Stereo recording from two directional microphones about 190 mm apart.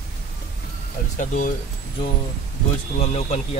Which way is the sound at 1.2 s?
45° left (ahead or behind).